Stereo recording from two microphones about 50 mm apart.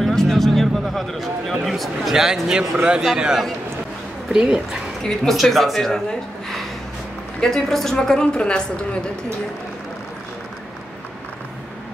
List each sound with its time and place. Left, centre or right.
0.0 s a sound: centre
2.8 s a man's voice: right
5.3 s speech: centre
7.3 s a woman's voice: centre
8.4 s a woman's voice: left